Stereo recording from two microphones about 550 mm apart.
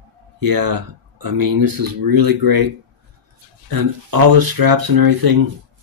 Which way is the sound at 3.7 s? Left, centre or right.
Right.